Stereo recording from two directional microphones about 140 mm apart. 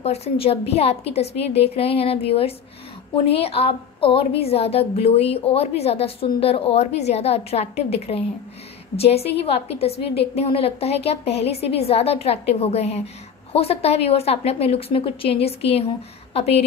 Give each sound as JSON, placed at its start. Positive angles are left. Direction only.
{"t": 0.0, "sound": "a woman's voice", "side_deg": 45}